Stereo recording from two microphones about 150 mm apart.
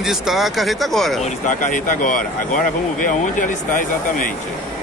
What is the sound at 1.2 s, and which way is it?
Speech, 60° left (ahead or behind).